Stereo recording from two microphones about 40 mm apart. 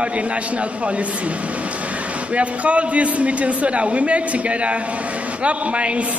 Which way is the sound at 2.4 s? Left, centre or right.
Right.